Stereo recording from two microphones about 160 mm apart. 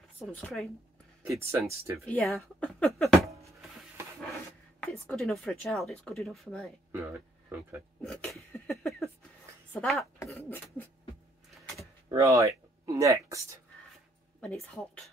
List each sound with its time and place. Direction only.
0.3 s speech: 5° left (ahead or behind)
1.2 s speech: 20° right (ahead or behind)
2.0 s speech: 5° left (ahead or behind)
4.8 s speech: 10° left (ahead or behind)
6.9 s speech: 15° right (ahead or behind)
8.0 s speech: 5° left (ahead or behind)
8.6 s a sound: centre (ahead or behind)
9.7 s speech: 5° left (ahead or behind)
10.3 s beatboxing: 15° left (ahead or behind)
12.1 s speech: 20° right (ahead or behind)
14.4 s speech: 5° left (ahead or behind)